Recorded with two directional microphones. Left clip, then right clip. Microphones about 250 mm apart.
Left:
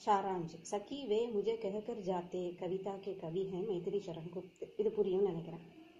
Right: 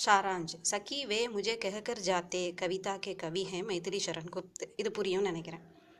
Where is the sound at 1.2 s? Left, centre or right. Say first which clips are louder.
Right 1 dB; right.